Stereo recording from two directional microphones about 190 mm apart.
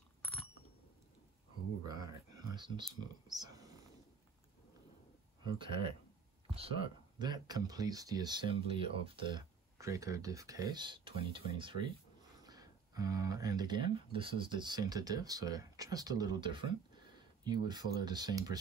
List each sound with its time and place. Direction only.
1.8 s speech: 20° right (ahead or behind)
5.4 s speech: 25° right (ahead or behind)
7.2 s speech: 20° right (ahead or behind)